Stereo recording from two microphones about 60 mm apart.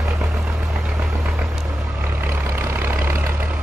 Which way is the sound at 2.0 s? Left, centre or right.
Right.